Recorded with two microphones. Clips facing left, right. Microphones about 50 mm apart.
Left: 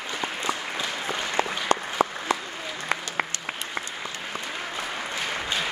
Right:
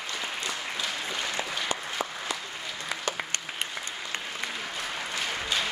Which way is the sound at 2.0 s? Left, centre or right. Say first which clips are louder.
Left 9 dB; left.